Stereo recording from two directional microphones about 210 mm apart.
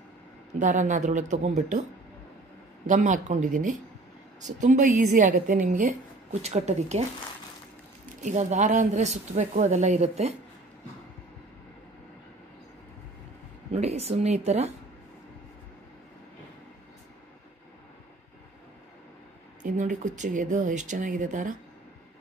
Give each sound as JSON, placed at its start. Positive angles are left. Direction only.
{"t": 0.6, "sound": "a woman's voice", "side_deg": -35}
{"t": 2.9, "sound": "a woman's voice", "side_deg": -35}
{"t": 8.2, "sound": "a woman's voice", "side_deg": -35}
{"t": 13.7, "sound": "speech", "side_deg": -30}
{"t": 19.6, "sound": "a woman's voice", "side_deg": -35}